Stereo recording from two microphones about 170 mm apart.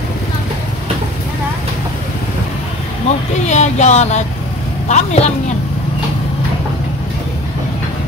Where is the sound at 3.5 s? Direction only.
45° left (ahead or behind).